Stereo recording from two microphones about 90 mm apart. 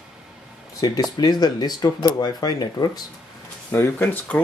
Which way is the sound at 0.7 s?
45° left (ahead or behind).